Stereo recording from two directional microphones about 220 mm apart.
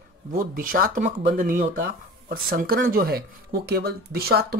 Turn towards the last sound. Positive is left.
turn(degrees=-45)  # may be behind; listen again after turning